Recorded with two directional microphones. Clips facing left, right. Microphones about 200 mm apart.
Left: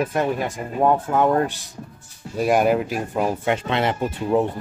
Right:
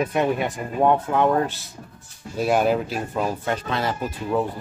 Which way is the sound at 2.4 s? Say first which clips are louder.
Left 2 dB; 10° left (ahead or behind).